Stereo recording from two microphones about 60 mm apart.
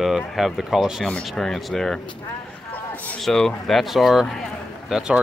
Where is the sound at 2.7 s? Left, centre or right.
Left.